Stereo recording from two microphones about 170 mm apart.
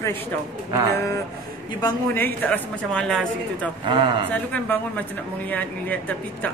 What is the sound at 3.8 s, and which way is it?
Speech, 30° right (ahead or behind).